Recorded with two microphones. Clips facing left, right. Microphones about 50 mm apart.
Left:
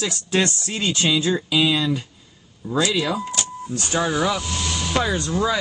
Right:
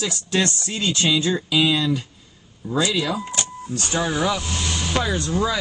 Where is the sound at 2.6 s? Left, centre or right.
Right.